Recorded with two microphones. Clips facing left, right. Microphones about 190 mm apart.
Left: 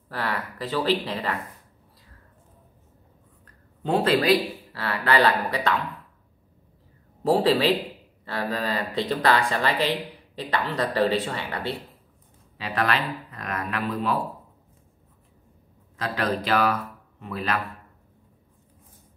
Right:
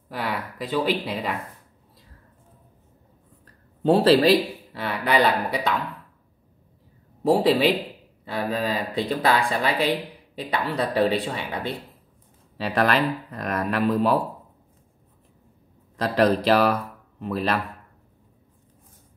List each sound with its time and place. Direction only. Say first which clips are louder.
0.1 s speech: right 1 dB; 15° right (ahead or behind)
3.8 s speech: right 5 dB; 35° right (ahead or behind)
4.7 s speech: right 1 dB; 15° right (ahead or behind)
7.2 s speech: right 1 dB; 10° right (ahead or behind)
12.7 s speech: right 4 dB; 40° right (ahead or behind)
16.0 s speech: right 7 dB; 35° right (ahead or behind)